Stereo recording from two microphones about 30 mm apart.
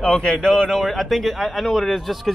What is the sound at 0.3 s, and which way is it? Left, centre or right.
Speech, left.